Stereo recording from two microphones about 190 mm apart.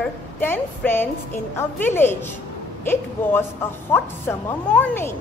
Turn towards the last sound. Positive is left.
turn(degrees=10)  # may be behind; listen again after turning